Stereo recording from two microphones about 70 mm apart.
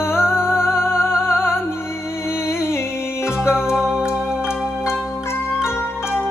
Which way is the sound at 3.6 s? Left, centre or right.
Centre.